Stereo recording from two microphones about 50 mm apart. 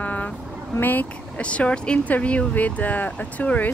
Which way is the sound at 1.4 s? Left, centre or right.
Left.